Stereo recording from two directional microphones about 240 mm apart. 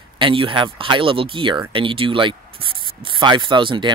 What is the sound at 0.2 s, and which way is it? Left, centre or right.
Speech, right.